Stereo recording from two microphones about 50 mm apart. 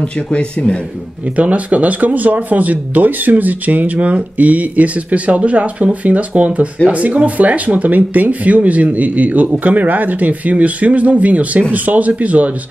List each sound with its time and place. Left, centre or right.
0.0 s speech: left
1.3 s speech: right